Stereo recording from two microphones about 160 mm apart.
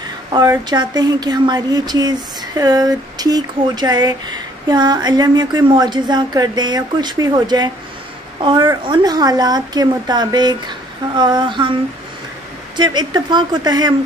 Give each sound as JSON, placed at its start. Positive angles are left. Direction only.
{"t": 0.3, "sound": "speech", "side_deg": -25}
{"t": 12.7, "sound": "speech", "side_deg": -25}